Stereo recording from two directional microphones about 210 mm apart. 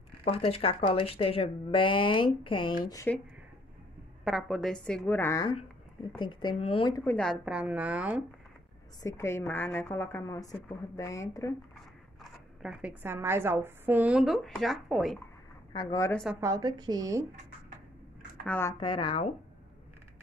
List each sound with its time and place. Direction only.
0.2 s a woman's voice: 25° left (ahead or behind)
4.2 s a woman's voice: centre (ahead or behind)
6.4 s speech: 25° left (ahead or behind)
7.1 s speech: 5° left (ahead or behind)
9.0 s a woman's voice: 15° left (ahead or behind)
12.2 s speech: 5° right (ahead or behind)
15.7 s speech: 20° left (ahead or behind)
16.3 s a woman's voice: 15° right (ahead or behind)
18.4 s a woman's voice: 10° left (ahead or behind)
18.8 s speech: 25° left (ahead or behind)